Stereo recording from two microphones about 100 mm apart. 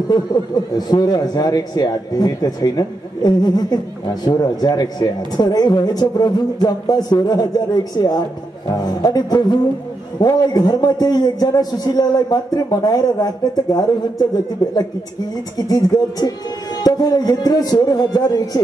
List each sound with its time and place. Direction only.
0.7 s a man's voice: 40° left (ahead or behind)